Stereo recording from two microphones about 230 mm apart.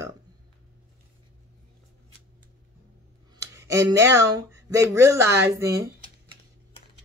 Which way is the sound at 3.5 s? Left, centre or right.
Centre.